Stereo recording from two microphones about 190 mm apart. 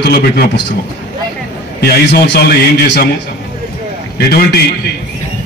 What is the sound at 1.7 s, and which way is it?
Speech, 55° left (ahead or behind).